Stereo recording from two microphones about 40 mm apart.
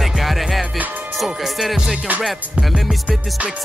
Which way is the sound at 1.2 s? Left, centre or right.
Centre.